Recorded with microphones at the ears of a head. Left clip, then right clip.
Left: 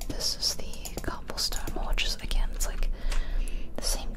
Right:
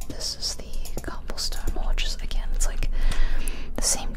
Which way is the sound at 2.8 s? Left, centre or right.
Right.